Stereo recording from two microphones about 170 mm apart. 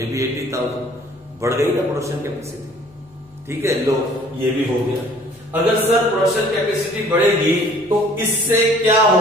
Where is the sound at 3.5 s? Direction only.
15° right (ahead or behind).